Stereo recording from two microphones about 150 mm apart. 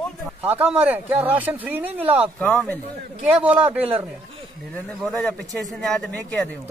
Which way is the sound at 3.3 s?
10° right (ahead or behind).